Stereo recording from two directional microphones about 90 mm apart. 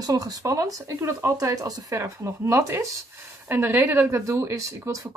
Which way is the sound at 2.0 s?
30° right (ahead or behind).